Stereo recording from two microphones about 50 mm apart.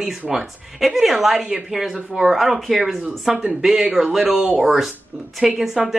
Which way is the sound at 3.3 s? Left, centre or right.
Right.